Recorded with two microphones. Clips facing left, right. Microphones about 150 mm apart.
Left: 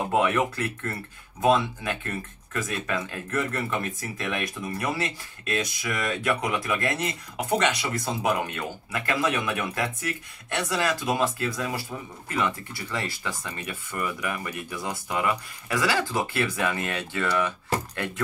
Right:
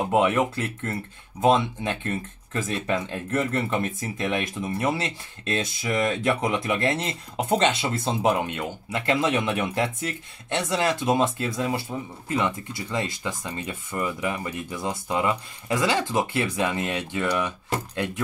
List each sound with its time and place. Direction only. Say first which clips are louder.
0.1 s speech: right 2 dB; 20° right (ahead or behind)